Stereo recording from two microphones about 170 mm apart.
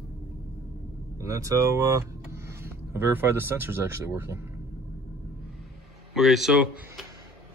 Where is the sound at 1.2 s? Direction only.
20° right (ahead or behind).